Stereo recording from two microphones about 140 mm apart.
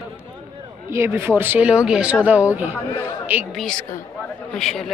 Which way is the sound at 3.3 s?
10° right (ahead or behind).